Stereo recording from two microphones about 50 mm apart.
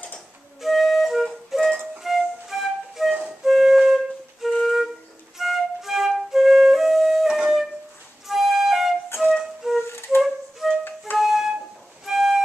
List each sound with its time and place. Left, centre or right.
0.6 s flute: centre
7.2 s wind instrument: centre
8.3 s flute: centre
9.8 s flute: left
10.2 s flute: centre
10.8 s flute: left
11.1 s flute: centre
12.0 s music: centre